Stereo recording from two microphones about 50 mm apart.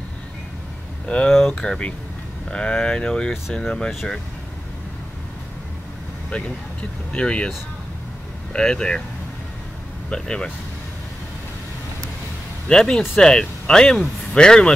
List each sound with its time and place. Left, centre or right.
1.0 s speech: left
6.3 s speech: left
8.5 s speech: centre
10.0 s speech: centre
12.6 s speech: centre